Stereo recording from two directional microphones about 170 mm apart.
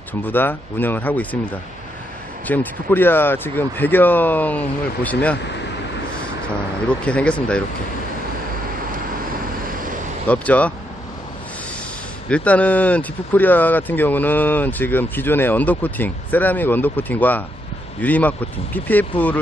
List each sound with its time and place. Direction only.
0.2 s speech: 10° left (ahead or behind)
2.4 s speech: 10° left (ahead or behind)
6.9 s speech: 5° left (ahead or behind)
9.7 s vehicle: 55° right (ahead or behind)
10.2 s speech: 10° left (ahead or behind)
12.3 s speech: 5° left (ahead or behind)